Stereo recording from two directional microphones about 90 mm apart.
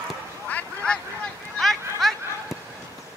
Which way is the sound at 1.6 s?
5° left (ahead or behind).